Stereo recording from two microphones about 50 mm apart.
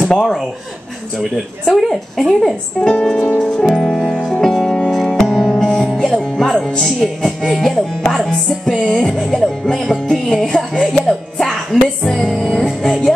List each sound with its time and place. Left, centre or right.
1.7 s speech: centre
3.8 s music: centre
6.4 s speech: centre
8.1 s music: centre